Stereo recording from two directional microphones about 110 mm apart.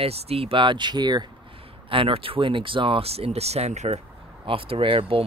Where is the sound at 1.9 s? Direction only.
55° right (ahead or behind); by 4.0 s 80° right.